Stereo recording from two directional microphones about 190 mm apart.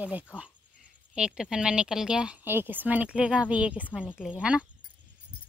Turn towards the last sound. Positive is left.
turn(degrees=-5)  # may be behind; listen again after turning